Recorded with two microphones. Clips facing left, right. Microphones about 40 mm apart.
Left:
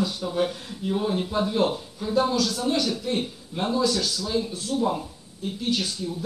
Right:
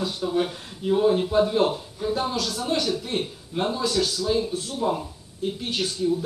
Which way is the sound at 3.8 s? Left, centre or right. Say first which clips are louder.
Even; right.